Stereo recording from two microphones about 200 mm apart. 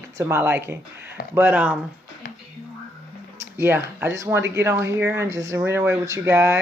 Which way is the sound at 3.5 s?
10° right (ahead or behind).